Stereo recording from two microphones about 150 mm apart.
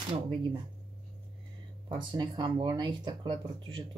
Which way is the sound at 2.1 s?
30° right (ahead or behind).